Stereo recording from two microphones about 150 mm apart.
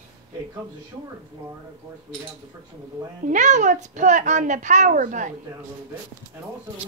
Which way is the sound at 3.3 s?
55° right (ahead or behind).